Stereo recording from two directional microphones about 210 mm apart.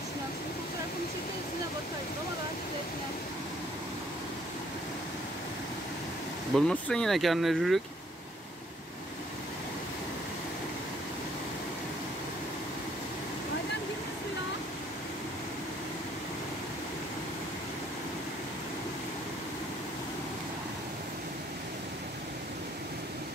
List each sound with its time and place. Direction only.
6.5 s speech: 5° left (ahead or behind)